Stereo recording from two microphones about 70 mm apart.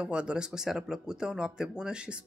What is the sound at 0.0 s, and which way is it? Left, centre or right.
Speech, centre.